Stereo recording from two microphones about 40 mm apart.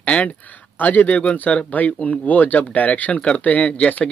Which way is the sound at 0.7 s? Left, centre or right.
Left.